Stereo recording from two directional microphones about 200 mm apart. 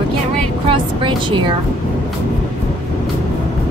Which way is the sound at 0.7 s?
25° right (ahead or behind).